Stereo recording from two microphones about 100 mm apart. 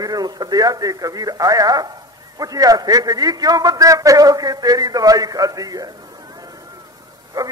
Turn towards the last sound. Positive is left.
turn(degrees=-40)  # may be behind; listen again after turning